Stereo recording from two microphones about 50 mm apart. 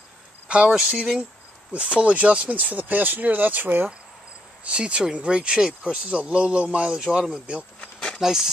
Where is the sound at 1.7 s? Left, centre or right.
Right.